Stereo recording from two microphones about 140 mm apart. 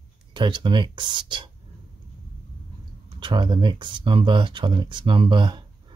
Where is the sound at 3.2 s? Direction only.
35° right (ahead or behind).